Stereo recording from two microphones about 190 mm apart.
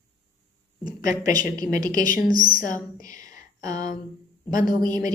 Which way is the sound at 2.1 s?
45° left (ahead or behind).